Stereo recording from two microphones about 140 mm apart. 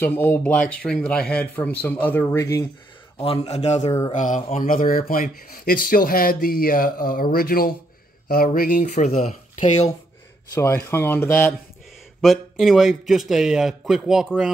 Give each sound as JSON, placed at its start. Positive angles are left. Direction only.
{"t": 0.0, "sound": "speech", "side_deg": 15}
{"t": 3.2, "sound": "a man's voice", "side_deg": 45}
{"t": 4.1, "sound": "a man's voice", "side_deg": 65}
{"t": 10.5, "sound": "speech", "side_deg": 20}
{"t": 12.2, "sound": "a man's voice", "side_deg": 0}